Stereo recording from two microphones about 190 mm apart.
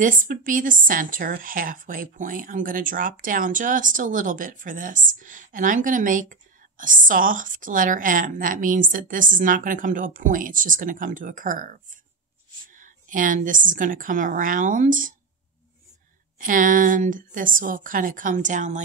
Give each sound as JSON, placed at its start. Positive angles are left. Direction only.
{"t": 0.0, "sound": "a woman's voice", "side_deg": -45}
{"t": 12.7, "sound": "a woman's voice", "side_deg": -45}
{"t": 16.3, "sound": "a woman's voice", "side_deg": -45}